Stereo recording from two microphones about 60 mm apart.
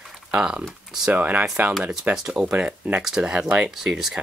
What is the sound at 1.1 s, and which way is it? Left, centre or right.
Speech, right.